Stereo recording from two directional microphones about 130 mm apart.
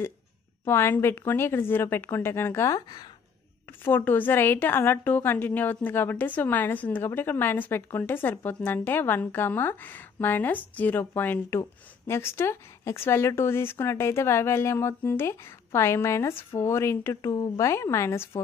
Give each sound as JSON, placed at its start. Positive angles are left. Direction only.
{"t": 0.7, "sound": "speech", "side_deg": 20}
{"t": 3.8, "sound": "a woman's voice", "side_deg": 15}